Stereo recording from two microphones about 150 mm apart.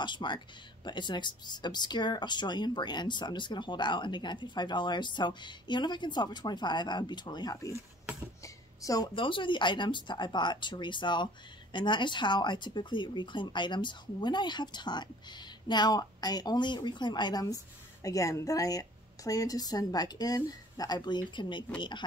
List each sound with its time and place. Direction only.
0.0 s speech: 30° left (ahead or behind)